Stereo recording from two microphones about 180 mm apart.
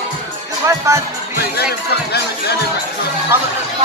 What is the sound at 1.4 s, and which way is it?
Speech, 60° left (ahead or behind).